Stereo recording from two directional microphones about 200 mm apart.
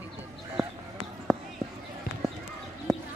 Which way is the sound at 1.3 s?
Centre (ahead or behind).